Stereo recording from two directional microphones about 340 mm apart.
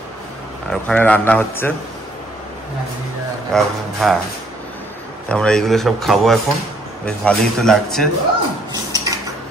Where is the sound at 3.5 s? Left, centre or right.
Centre.